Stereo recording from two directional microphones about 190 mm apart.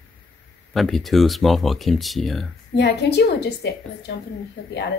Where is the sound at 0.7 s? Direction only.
Centre (ahead or behind).